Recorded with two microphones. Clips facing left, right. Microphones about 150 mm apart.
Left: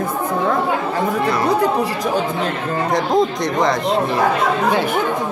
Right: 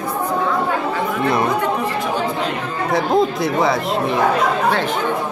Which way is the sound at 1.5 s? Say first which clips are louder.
Left 3 dB; 35° left (ahead or behind).